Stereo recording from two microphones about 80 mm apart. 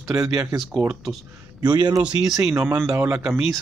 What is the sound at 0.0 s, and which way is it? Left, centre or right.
Speech, right.